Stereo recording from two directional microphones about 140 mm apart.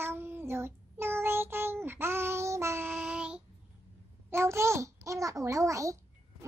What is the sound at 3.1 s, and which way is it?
Child singing, 5° right (ahead or behind).